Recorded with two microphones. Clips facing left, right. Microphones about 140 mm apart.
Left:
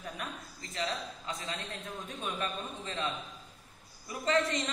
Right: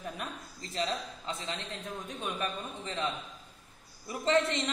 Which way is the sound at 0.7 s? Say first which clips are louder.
Right 2 dB; 25° right (ahead or behind).